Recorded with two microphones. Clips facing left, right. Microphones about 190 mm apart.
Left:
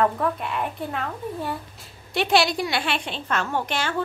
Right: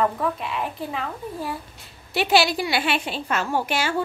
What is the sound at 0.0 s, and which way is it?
A woman's voice, centre (ahead or behind).